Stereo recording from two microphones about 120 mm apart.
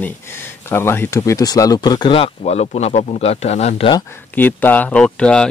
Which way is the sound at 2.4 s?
60° left (ahead or behind).